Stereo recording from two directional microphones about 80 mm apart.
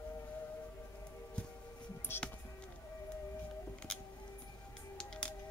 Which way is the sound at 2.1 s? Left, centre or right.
Left.